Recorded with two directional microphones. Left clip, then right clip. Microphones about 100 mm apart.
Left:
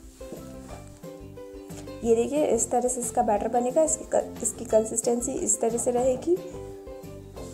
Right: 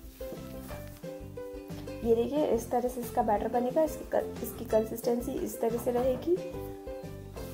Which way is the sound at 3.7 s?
25° left (ahead or behind).